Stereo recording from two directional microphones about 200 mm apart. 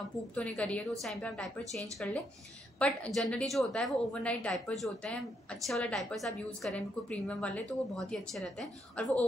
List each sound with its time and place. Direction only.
0.3 s a woman's voice: 5° left (ahead or behind)